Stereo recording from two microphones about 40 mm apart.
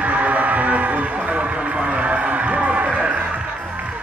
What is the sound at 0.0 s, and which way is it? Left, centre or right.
Music, right.